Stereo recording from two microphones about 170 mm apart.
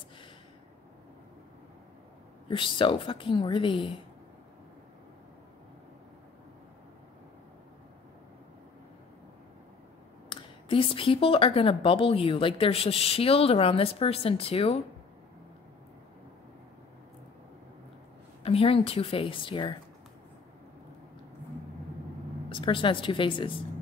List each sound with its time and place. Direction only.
2.4 s speech: 30° left (ahead or behind)
10.3 s speech: 30° left (ahead or behind)
18.4 s speech: 35° left (ahead or behind)
22.5 s speech: 30° left (ahead or behind)